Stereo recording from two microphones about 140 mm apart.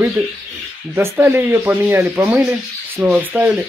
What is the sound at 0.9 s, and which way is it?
Speech, 15° right (ahead or behind).